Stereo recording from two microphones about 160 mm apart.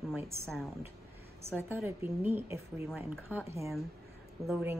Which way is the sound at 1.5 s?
15° right (ahead or behind).